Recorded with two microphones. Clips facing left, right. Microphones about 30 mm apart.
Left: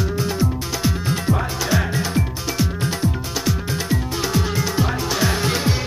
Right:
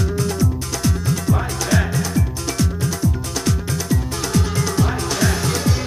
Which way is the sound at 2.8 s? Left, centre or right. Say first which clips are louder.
Even; left.